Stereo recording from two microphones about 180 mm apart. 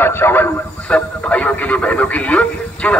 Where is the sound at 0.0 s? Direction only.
10° left (ahead or behind).